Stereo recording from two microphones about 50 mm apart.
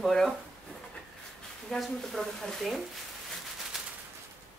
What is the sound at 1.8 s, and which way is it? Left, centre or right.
Speech, centre.